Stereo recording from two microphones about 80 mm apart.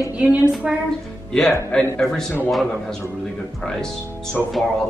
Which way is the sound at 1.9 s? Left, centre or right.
Centre.